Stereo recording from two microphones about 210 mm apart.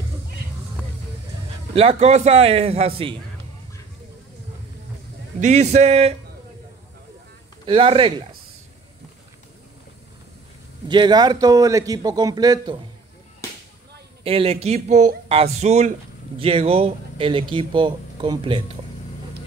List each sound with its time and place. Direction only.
1.8 s speech: 30° right (ahead or behind)
5.4 s a man's voice: 30° right (ahead or behind)
7.6 s speech: 25° right (ahead or behind)
10.9 s speech: 20° right (ahead or behind)
14.2 s a man's voice: 25° right (ahead or behind)